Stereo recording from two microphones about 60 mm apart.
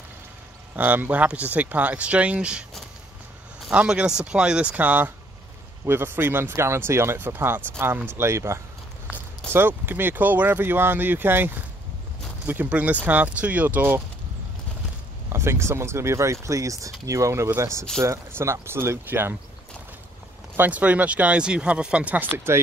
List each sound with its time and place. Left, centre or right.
0.7 s speech: right
3.7 s speech: centre
4.7 s speech: right
9.5 s speech: right
12.6 s speech: right
15.3 s speech: right
20.5 s speech: right